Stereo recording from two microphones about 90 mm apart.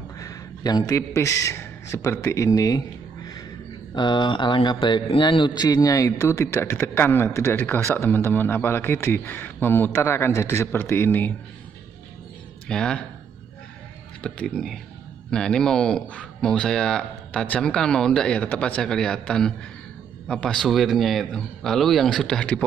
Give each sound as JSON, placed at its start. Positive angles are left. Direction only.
{"t": 0.2, "sound": "a sound", "side_deg": 45}
{"t": 0.8, "sound": "a man's voice", "side_deg": 35}
{"t": 3.9, "sound": "speech", "side_deg": 60}
{"t": 5.2, "sound": "a man's voice", "side_deg": 55}
{"t": 12.6, "sound": "speech", "side_deg": 10}
{"t": 14.2, "sound": "speech", "side_deg": 10}